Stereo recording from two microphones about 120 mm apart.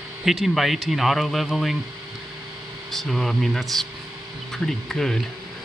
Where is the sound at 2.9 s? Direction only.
Centre (ahead or behind).